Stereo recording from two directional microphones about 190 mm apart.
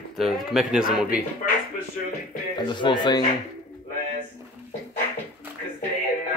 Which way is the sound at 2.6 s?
25° left (ahead or behind).